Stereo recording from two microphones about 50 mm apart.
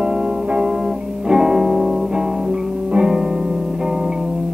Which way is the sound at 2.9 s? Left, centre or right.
Centre.